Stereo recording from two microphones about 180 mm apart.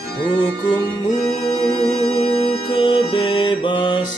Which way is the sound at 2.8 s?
30° left (ahead or behind).